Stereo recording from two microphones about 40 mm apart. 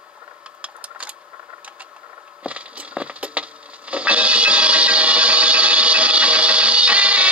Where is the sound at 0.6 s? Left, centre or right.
Right.